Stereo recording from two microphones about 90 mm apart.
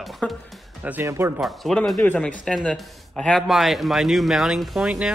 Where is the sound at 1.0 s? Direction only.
30° right (ahead or behind).